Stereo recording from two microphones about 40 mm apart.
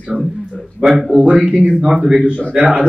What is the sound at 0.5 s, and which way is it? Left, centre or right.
Speech, centre.